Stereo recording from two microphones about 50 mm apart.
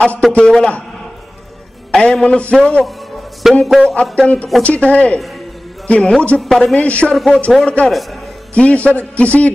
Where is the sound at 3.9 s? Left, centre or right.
Left.